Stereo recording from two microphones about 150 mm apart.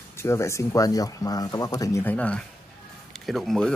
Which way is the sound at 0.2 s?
20° left (ahead or behind).